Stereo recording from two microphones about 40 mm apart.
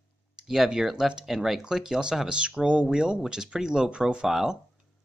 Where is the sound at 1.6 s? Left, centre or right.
Centre.